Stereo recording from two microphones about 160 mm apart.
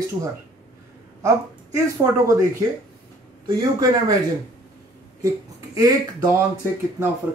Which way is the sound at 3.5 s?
25° right (ahead or behind).